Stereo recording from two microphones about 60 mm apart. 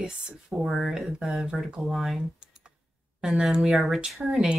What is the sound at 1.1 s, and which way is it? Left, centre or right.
Speech, centre.